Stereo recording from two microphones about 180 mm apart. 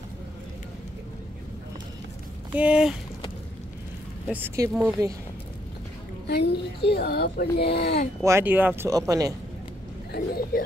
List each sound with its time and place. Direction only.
2.5 s speech: 5° right (ahead or behind)
4.3 s speech: 10° right (ahead or behind)
6.2 s a woman's voice: 65° left (ahead or behind)
8.2 s speech: 15° right (ahead or behind)
10.1 s a child's voice: 55° left (ahead or behind)